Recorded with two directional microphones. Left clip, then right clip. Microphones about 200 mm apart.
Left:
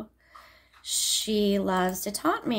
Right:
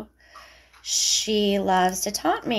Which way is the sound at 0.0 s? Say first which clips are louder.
Right 3 dB; 25° left (ahead or behind).